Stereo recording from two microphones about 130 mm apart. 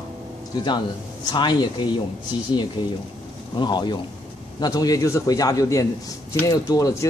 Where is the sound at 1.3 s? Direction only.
35° left (ahead or behind).